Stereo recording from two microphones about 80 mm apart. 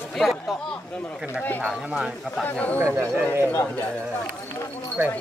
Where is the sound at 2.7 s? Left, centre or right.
Right.